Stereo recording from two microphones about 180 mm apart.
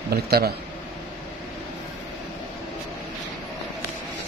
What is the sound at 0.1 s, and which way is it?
Speech, 60° right (ahead or behind).